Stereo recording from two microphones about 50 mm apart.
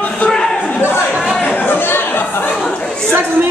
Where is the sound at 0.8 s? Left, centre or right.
Left.